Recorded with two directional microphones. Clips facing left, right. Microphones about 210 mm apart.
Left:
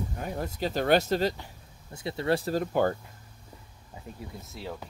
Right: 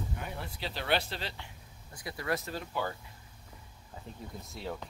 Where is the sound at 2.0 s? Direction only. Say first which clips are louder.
Left 7 dB; 25° left (ahead or behind).